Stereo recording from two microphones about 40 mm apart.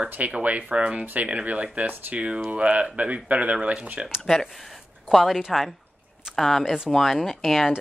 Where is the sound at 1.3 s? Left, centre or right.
Right.